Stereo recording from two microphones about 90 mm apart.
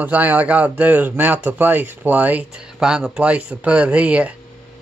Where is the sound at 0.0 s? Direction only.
20° right (ahead or behind).